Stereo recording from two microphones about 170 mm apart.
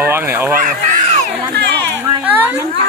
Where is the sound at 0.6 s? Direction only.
45° right (ahead or behind).